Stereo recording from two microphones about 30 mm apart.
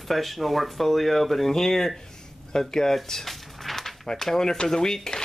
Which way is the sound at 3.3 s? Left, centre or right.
Centre.